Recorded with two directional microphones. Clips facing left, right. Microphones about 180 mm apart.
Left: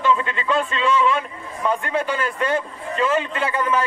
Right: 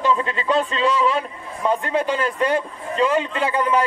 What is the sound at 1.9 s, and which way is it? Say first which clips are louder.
A man's voice: right 2 dB; 15° right (ahead or behind).